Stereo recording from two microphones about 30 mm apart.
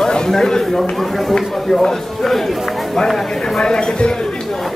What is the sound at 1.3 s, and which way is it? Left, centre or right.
Speech, centre.